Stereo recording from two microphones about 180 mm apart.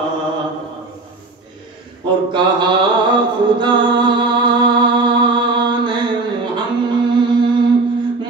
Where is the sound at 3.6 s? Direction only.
25° right (ahead or behind).